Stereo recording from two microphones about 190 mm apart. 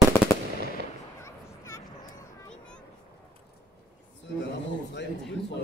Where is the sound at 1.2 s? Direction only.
15° left (ahead or behind).